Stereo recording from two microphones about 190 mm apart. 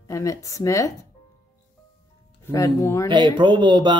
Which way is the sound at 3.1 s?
25° right (ahead or behind).